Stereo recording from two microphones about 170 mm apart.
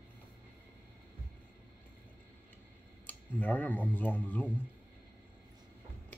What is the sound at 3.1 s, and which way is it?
Speech, 10° left (ahead or behind).